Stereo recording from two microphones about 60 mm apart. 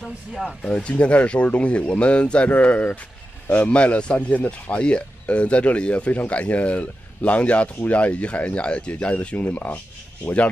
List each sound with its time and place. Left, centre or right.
0.3 s speech: centre
0.7 s a man's voice: centre